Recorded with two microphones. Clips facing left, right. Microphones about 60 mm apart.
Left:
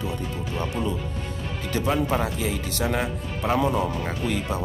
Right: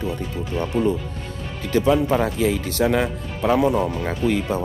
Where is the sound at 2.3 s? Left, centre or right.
Right.